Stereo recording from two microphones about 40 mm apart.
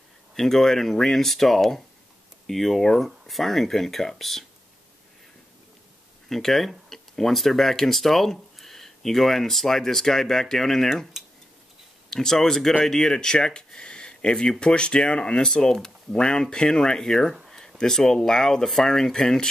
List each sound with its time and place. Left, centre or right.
0.3 s speech: centre
6.2 s speech: centre
12.1 s speech: centre
17.5 s a sound: centre
17.7 s speech: centre